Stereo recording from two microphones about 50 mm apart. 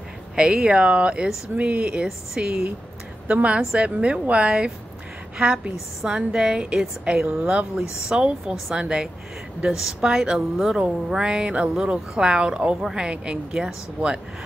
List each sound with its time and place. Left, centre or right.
0.4 s a woman's voice: centre
3.3 s a woman's voice: right